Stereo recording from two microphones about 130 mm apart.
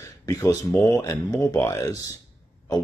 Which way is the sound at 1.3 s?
25° left (ahead or behind).